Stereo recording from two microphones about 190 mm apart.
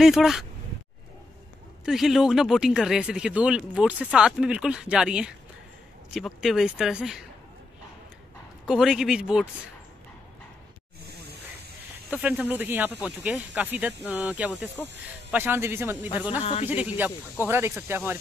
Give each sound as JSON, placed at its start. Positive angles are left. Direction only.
{"t": 0.0, "sound": "speech", "side_deg": 0}
{"t": 1.9, "sound": "speech", "side_deg": 0}
{"t": 8.6, "sound": "speech", "side_deg": -5}
{"t": 11.1, "sound": "hiss", "side_deg": -60}
{"t": 12.1, "sound": "speech", "side_deg": -5}